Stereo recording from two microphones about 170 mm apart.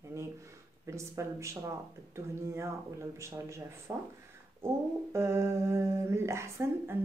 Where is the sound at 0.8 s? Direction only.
15° right (ahead or behind).